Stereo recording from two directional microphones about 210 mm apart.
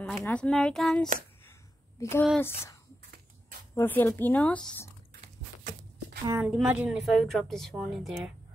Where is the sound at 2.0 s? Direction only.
15° left (ahead or behind).